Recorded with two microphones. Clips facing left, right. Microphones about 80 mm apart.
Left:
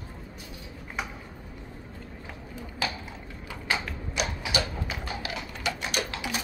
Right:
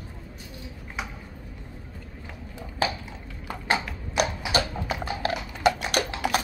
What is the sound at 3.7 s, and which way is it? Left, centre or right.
Clip-clop, right.